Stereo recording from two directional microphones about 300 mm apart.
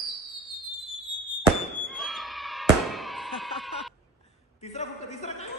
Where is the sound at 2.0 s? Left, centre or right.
Centre.